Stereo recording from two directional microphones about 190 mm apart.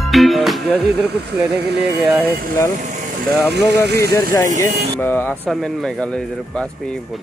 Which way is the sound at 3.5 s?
60° right (ahead or behind).